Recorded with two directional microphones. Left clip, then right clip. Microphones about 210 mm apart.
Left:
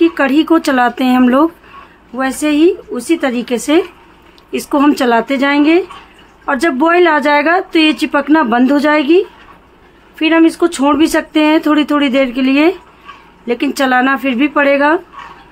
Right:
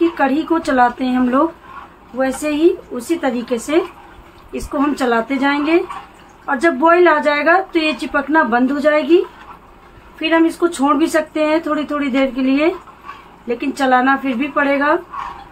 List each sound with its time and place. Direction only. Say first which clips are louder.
0.2 s speech: left 5 dB; 55° left (ahead or behind)